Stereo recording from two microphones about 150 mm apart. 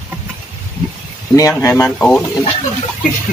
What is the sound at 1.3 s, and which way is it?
Speech, 20° left (ahead or behind).